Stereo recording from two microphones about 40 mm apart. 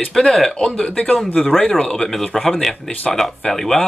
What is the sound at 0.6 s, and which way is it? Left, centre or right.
Speech, left.